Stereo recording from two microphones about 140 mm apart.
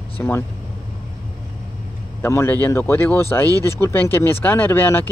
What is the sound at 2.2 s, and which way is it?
Speech, 15° left (ahead or behind).